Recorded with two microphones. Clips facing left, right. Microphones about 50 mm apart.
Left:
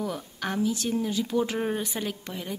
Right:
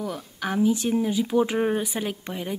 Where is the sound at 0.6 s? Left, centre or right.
Centre.